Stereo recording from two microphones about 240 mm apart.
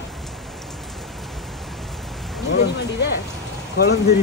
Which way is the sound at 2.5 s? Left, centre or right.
Left.